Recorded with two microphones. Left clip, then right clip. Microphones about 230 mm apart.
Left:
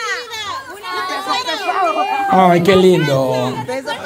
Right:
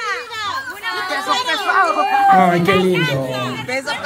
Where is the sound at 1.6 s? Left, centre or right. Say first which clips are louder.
Right 1 dB; left.